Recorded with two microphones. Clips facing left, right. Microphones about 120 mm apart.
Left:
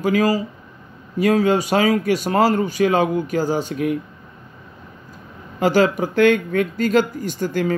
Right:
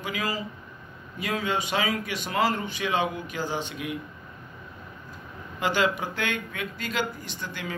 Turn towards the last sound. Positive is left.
turn(degrees=45)  # may be behind; listen again after turning